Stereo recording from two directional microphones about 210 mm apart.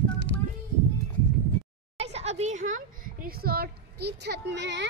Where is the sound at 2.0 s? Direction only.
30° right (ahead or behind).